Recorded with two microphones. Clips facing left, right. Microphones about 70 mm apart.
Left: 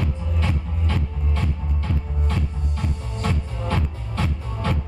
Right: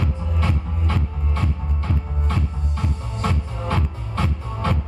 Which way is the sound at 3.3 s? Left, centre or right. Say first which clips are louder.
Right 1 dB; centre.